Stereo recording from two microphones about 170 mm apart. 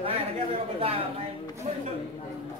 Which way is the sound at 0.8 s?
35° right (ahead or behind).